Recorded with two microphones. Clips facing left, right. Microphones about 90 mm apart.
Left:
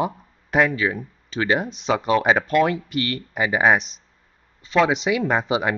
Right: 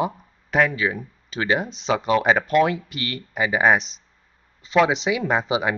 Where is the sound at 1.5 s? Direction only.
5° left (ahead or behind).